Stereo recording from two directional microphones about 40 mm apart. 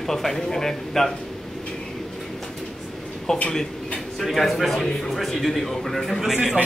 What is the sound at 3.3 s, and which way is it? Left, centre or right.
A man's voice, centre.